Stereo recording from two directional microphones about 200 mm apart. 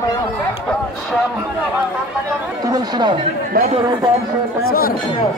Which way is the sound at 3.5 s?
45° right (ahead or behind).